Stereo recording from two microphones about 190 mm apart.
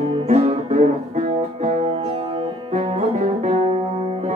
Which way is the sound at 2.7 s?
35° right (ahead or behind).